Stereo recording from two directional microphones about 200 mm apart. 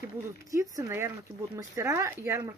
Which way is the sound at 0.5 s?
15° right (ahead or behind).